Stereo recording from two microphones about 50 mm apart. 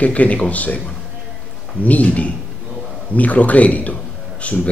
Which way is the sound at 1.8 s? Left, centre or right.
Left.